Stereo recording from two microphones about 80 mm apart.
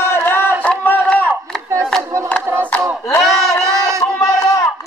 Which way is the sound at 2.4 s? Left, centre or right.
Right.